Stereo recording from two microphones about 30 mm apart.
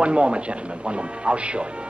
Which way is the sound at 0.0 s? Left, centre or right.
Right.